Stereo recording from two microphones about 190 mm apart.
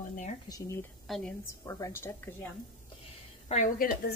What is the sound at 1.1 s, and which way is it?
Speech, centre (ahead or behind).